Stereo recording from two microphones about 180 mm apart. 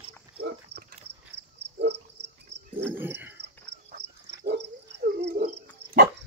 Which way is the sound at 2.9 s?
10° right (ahead or behind).